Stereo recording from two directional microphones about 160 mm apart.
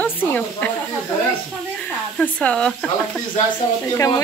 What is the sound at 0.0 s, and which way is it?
Speech, 10° left (ahead or behind).